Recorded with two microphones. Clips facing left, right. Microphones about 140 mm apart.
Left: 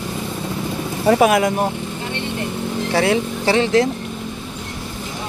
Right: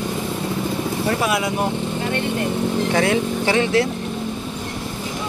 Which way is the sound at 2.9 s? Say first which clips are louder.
Left 4 dB; 30° left (ahead or behind).